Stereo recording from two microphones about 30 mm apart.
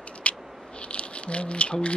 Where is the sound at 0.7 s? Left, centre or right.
Left.